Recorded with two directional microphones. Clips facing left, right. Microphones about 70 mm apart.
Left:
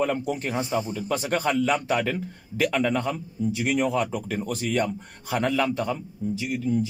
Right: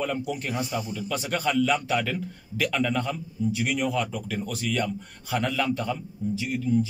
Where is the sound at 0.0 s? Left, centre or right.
Left.